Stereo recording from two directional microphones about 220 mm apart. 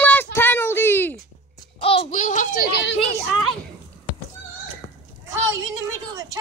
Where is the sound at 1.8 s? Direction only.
25° left (ahead or behind).